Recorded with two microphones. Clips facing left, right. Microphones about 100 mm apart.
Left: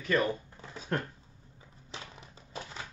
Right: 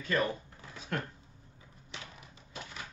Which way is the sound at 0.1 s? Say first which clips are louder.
Left 3 dB; 30° left (ahead or behind).